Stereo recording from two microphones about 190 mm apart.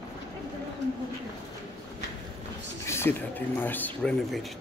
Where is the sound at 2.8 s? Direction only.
10° left (ahead or behind).